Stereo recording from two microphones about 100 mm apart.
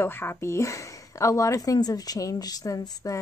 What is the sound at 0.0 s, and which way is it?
Speech, 20° left (ahead or behind).